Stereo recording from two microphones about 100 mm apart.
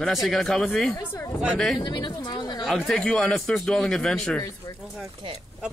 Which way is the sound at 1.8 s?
45° left (ahead or behind).